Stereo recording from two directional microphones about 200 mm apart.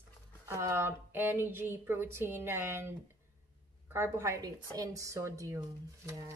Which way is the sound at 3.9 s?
15° right (ahead or behind).